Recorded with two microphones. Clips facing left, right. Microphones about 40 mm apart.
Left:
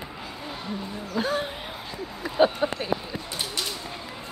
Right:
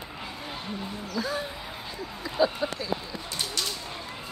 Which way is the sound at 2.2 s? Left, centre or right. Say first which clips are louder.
Left 4 dB; left.